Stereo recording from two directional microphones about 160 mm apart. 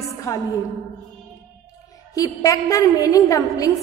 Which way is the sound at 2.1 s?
20° left (ahead or behind).